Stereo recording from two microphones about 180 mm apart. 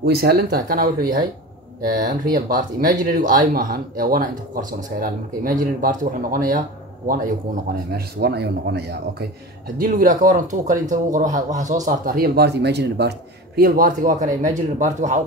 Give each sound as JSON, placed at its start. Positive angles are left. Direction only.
{"t": 0.0, "sound": "a man's voice", "side_deg": -60}
{"t": 7.6, "sound": "a man's voice", "side_deg": -60}
{"t": 9.8, "sound": "speech", "side_deg": -50}
{"t": 13.6, "sound": "speech", "side_deg": -55}